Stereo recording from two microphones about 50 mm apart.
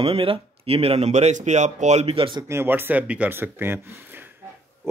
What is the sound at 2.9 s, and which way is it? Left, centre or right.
Speech, right.